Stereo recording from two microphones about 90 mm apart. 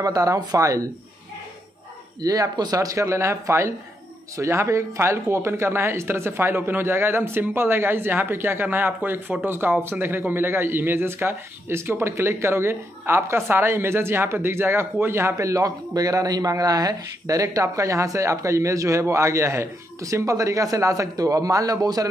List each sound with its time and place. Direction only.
0.0 s speech: 40° right (ahead or behind)
2.2 s speech: 40° right (ahead or behind)